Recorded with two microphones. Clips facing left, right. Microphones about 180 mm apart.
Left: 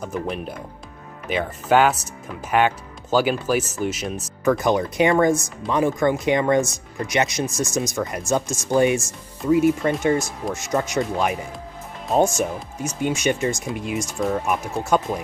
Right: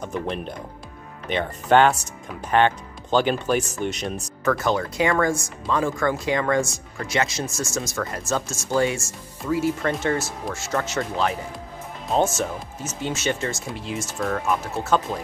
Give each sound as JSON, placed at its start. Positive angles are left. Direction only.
{"t": 0.0, "sound": "speech", "side_deg": 5}
{"t": 4.5, "sound": "speech", "side_deg": 15}